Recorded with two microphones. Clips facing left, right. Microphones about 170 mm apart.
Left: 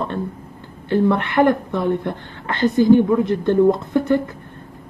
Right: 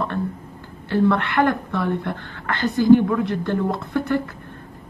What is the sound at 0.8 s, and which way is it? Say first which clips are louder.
A woman's voice: left 2 dB; 20° left (ahead or behind).